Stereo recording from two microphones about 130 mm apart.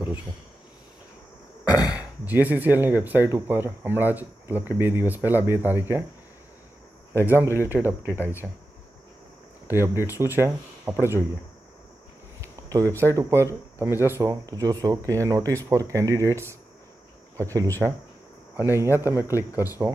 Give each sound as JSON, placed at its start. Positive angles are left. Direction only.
{"t": 1.6, "sound": "throat clearing", "side_deg": 30}
{"t": 2.0, "sound": "speech", "side_deg": -10}
{"t": 7.3, "sound": "speech", "side_deg": -20}
{"t": 9.9, "sound": "speech", "side_deg": -15}
{"t": 12.4, "sound": "a sound", "side_deg": -25}
{"t": 12.9, "sound": "speech", "side_deg": -20}
{"t": 17.4, "sound": "speech", "side_deg": -25}
{"t": 19.5, "sound": "speech", "side_deg": 25}